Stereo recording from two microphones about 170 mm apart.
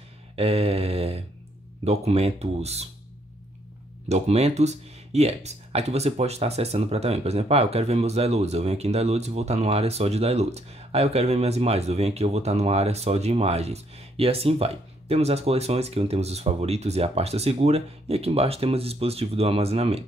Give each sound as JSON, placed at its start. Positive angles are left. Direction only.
{"t": 0.4, "sound": "speech", "side_deg": -35}
{"t": 4.1, "sound": "speech", "side_deg": -40}